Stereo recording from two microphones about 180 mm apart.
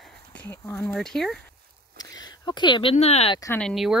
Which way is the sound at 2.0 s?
20° left (ahead or behind).